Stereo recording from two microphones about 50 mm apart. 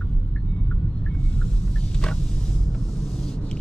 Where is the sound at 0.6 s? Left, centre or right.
Left.